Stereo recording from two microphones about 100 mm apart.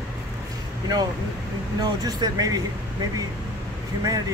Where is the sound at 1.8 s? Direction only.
40° right (ahead or behind).